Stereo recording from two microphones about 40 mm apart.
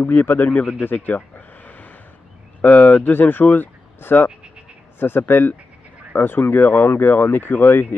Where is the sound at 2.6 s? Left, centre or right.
Left.